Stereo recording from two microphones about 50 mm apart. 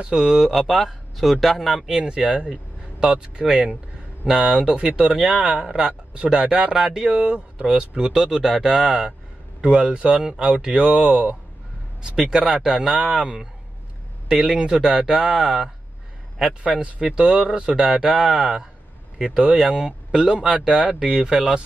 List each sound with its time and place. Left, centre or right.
0.0 s speech: centre
1.9 s speech: centre
4.3 s speech: centre
4.6 s speech: centre
6.7 s speech: centre
10.9 s speech: centre
16.7 s speech: right